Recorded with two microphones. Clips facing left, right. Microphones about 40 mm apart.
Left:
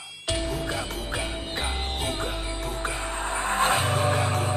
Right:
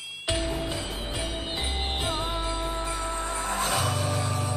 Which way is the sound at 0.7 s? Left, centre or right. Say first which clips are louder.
Left 2 dB; left.